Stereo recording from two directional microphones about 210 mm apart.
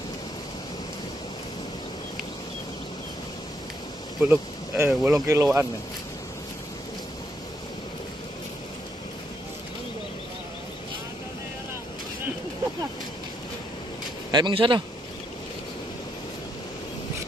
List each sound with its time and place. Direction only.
4.2 s speech: 10° right (ahead or behind)
14.3 s a man's voice: 20° right (ahead or behind)